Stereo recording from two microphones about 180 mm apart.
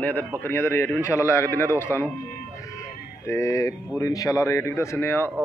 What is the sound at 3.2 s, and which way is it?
A man's voice, 15° left (ahead or behind).